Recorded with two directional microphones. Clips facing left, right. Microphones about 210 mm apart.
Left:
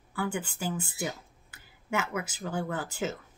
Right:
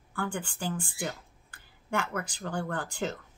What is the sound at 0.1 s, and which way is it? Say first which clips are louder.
Speech: left 2 dB; 5° left (ahead or behind).